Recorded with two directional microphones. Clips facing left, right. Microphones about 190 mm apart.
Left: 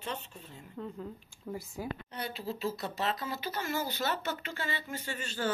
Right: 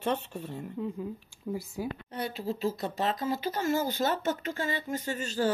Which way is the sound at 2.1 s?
40° right (ahead or behind).